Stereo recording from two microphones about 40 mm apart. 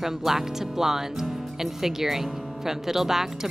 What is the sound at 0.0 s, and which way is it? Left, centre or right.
Speech, centre.